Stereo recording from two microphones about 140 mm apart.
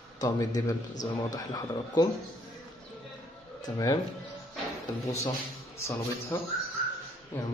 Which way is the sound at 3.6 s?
25° left (ahead or behind).